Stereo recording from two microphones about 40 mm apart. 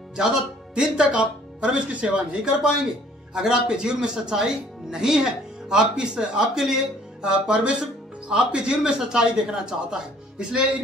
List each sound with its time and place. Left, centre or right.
0.1 s speech: centre; by 2.2 s right
2.4 s speech: centre